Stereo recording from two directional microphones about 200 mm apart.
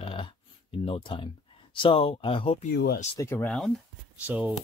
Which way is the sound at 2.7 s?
50° left (ahead or behind).